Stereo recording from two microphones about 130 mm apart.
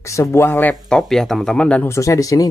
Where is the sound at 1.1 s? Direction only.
5° left (ahead or behind).